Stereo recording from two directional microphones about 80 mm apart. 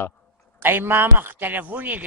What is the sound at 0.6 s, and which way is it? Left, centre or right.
A man's voice, right.